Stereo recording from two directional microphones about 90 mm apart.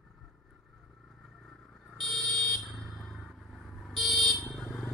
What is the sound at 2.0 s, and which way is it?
Vehicle, 5° left (ahead or behind).